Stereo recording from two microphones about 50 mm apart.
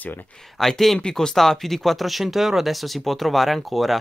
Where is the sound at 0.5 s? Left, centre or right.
Centre.